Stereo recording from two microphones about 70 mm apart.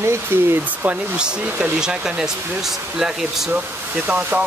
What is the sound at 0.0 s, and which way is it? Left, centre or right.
Speech, right.